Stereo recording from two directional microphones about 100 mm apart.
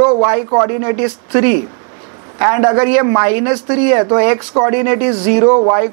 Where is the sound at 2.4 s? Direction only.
30° right (ahead or behind).